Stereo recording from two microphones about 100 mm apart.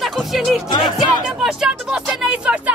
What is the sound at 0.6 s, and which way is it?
Music, 45° left (ahead or behind).